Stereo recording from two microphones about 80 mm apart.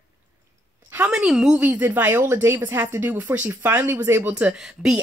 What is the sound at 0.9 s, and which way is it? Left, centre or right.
Speech, centre.